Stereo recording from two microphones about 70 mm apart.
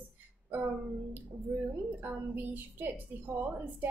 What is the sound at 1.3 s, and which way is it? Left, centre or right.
A woman's voice, right.